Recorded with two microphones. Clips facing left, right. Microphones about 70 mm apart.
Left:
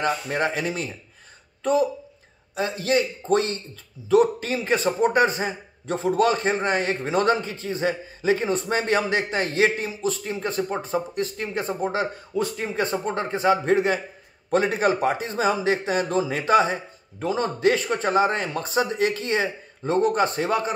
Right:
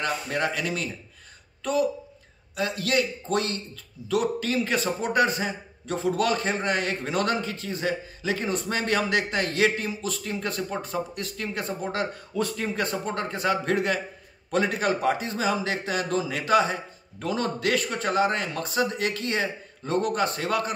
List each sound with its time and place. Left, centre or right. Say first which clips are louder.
0.0 s a man's voice: left 3 dB; left